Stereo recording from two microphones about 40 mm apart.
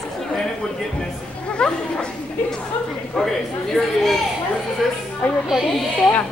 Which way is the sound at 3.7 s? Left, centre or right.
Centre.